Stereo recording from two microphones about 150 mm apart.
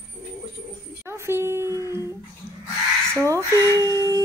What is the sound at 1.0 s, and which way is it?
Speech, 15° right (ahead or behind).